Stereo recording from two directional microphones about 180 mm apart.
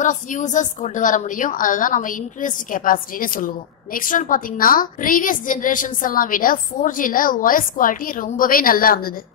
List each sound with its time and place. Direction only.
0.0 s a woman's voice: 45° left (ahead or behind)